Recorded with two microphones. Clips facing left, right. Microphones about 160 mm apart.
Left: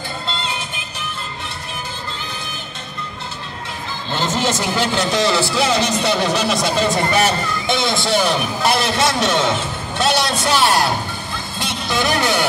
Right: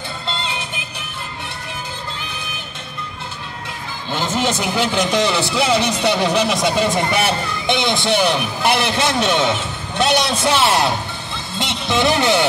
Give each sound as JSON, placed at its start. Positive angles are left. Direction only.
{"t": 0.4, "sound": "music", "side_deg": -20}
{"t": 4.1, "sound": "a man's voice", "side_deg": -10}
{"t": 11.5, "sound": "vehicle", "side_deg": -20}